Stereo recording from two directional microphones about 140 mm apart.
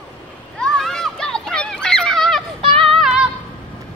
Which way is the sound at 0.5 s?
5° left (ahead or behind).